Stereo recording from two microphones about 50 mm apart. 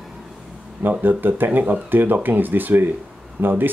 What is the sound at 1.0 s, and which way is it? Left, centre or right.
Speech, right.